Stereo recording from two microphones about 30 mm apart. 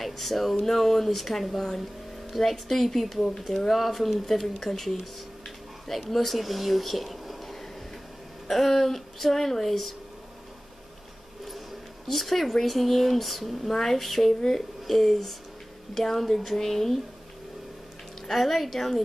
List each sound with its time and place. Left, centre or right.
0.0 s speech: centre
3.2 s speech: centre
3.4 s speech: centre
6.0 s speech: centre
12.1 s speech: centre
18.2 s speech: centre